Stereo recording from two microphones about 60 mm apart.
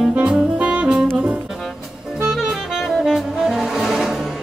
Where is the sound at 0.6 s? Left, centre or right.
Centre.